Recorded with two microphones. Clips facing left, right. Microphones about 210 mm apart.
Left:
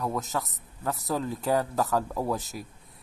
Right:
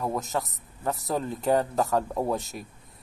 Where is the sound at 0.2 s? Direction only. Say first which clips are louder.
Right 2 dB; centre (ahead or behind).